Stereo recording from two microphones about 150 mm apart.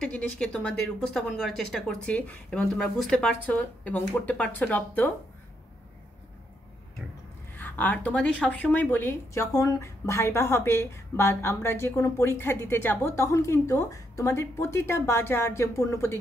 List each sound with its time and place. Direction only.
0.0 s a woman's voice: 5° left (ahead or behind)
7.5 s a woman's voice: 10° left (ahead or behind)